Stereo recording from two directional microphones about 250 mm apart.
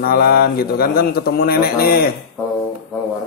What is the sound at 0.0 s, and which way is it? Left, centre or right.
A man's voice, left.